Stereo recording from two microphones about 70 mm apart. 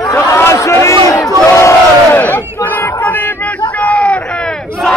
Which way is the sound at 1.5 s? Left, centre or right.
Left.